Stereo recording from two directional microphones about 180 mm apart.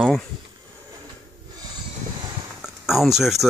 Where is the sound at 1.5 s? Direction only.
20° right (ahead or behind).